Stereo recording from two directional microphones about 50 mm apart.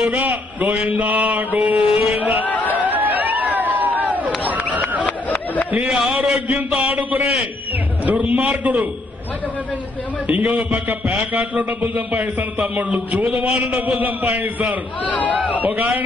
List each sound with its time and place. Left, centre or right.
0.6 s a man's voice: right
2.4 s a sound: left
2.7 s a sound: right
5.9 s a man's voice: centre
7.0 s a sound: right
8.0 s a man's voice: right
10.3 s a man's voice: right
15.0 s a man's voice: left
15.6 s a man's voice: right